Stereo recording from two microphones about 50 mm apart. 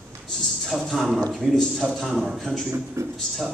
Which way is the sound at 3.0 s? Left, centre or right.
Right.